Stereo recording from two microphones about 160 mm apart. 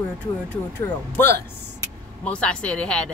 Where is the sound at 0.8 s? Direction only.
15° left (ahead or behind).